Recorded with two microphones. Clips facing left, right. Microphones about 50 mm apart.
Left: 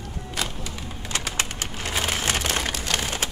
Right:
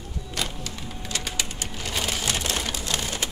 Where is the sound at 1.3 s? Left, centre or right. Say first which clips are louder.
Left 3 dB; left.